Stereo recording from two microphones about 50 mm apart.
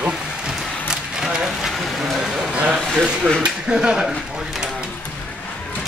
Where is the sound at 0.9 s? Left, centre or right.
Centre.